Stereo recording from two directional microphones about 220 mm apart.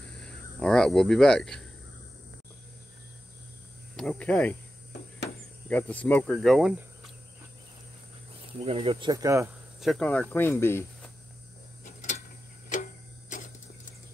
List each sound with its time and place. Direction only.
0.2 s speech: 5° left (ahead or behind)
3.9 s speech: 5° left (ahead or behind)
8.5 s speech: 25° right (ahead or behind)
9.8 s speech: centre (ahead or behind)
11.8 s a sound: 35° left (ahead or behind)
12.6 s clock: 35° left (ahead or behind)